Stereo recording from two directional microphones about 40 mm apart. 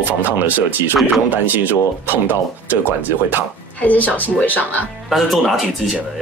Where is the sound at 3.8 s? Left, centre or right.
Left.